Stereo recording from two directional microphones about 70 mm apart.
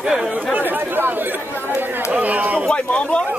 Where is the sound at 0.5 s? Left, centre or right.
Right.